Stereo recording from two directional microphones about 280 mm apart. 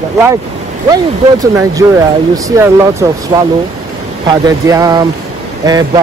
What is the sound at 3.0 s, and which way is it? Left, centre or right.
Speech, centre.